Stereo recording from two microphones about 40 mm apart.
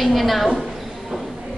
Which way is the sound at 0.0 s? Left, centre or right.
Centre.